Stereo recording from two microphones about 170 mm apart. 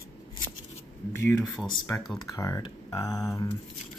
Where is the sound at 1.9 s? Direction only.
15° left (ahead or behind).